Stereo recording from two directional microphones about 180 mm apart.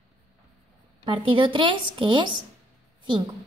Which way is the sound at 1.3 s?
30° right (ahead or behind).